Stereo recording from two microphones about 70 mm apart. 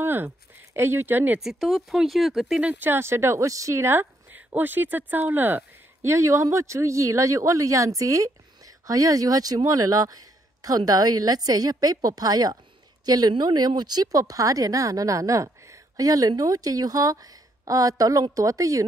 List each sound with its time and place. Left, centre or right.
0.0 s a sound: right
0.7 s speech: right
1.4 s speech: centre
2.8 s speech: right
3.4 s speech: right
6.0 s speech: right